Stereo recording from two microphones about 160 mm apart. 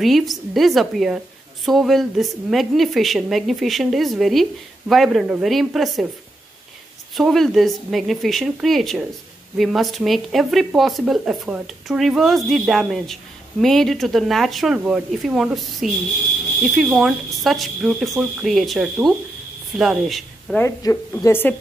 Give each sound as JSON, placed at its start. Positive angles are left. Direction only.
{"t": 0.0, "sound": "speech", "side_deg": 0}
{"t": 7.2, "sound": "speech", "side_deg": 0}
{"t": 20.6, "sound": "a woman's voice", "side_deg": 15}